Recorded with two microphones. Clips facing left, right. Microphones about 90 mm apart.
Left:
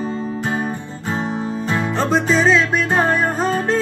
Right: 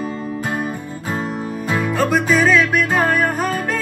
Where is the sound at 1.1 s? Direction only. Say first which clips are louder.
Left 2 dB; 25° left (ahead or behind).